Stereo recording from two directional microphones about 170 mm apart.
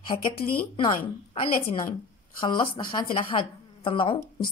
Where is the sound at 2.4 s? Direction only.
25° left (ahead or behind).